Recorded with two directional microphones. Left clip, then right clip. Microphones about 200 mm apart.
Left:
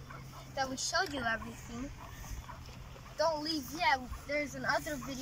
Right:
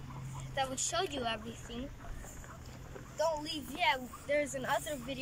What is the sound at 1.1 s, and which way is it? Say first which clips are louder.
Speech: left 2 dB; 15° right (ahead or behind).